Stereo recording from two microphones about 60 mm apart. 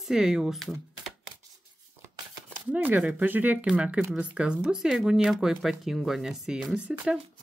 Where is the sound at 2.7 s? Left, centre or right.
Right.